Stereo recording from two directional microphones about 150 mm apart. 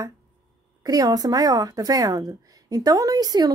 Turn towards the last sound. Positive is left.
turn(degrees=-25)  # may be behind; listen again after turning